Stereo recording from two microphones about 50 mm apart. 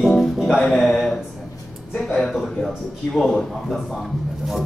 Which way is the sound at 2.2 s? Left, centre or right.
Centre.